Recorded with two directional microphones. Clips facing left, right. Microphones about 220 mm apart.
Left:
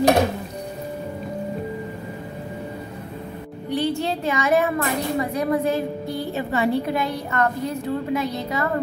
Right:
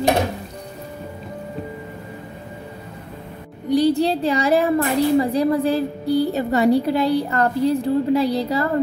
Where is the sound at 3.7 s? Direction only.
35° right (ahead or behind).